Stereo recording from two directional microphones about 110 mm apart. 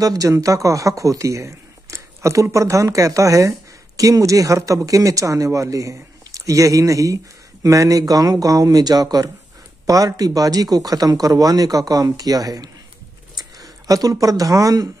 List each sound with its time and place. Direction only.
0.0 s speech: 35° right (ahead or behind)